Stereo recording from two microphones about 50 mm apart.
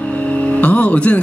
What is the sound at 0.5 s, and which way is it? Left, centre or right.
Music, left.